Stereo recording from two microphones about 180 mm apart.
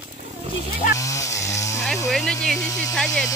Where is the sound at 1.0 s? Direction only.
15° left (ahead or behind).